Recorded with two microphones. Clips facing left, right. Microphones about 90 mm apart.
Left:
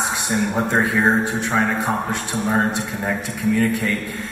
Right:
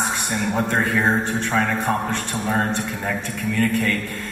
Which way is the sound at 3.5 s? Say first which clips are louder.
Left 1 dB; 15° left (ahead or behind).